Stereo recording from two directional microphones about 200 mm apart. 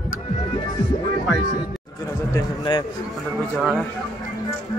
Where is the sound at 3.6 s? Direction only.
Centre (ahead or behind).